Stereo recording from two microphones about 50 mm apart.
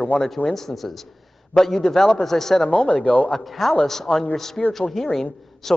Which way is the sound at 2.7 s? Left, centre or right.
Left.